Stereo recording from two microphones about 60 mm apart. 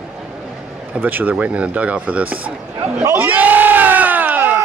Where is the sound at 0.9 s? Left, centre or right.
Right.